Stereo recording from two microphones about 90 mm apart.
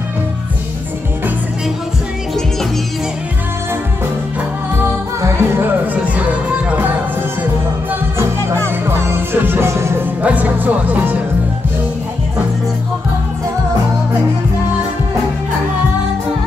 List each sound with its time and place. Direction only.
4.7 s music: 30° right (ahead or behind)
8.5 s music: 30° right (ahead or behind)
10.2 s speech: 15° right (ahead or behind)